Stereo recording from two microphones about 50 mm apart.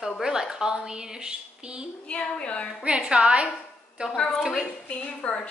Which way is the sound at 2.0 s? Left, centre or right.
Left.